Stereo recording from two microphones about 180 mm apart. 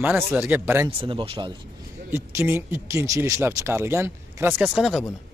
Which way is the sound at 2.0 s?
15° right (ahead or behind).